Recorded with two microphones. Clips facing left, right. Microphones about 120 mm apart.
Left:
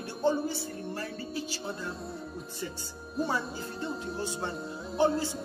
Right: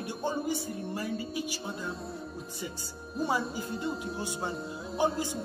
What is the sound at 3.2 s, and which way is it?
Speech, 10° right (ahead or behind).